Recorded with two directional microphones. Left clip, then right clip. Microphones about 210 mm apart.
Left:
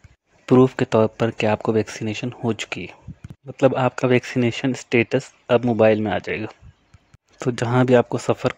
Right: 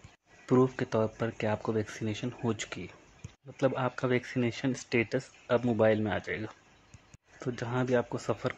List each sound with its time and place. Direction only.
0.5 s speech: 40° left (ahead or behind)